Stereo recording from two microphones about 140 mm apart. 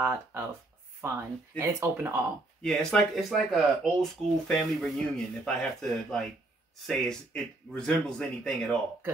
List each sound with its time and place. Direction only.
0.0 s speech: 15° right (ahead or behind)
2.6 s speech: 5° left (ahead or behind)